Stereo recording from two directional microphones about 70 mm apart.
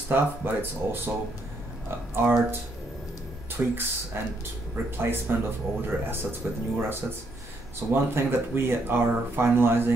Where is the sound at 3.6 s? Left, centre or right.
Right.